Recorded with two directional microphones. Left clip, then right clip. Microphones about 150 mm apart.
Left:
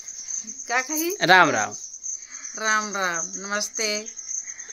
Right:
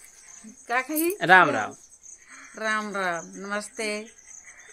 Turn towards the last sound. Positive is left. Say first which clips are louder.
# left 4 dB
turn(degrees=0)  # may be behind; listen again after turning